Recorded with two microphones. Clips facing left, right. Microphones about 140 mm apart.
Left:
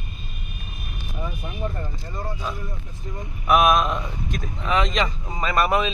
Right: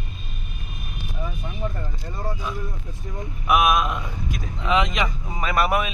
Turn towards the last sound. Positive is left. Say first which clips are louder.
# left 1 dB
turn(degrees=-10)  # may be behind; listen again after turning